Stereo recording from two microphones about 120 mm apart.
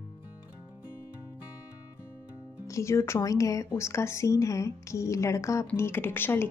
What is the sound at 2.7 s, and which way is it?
A woman's voice, 25° left (ahead or behind).